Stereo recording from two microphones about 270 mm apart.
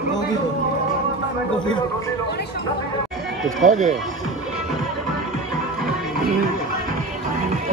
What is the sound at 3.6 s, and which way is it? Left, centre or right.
Speech, right.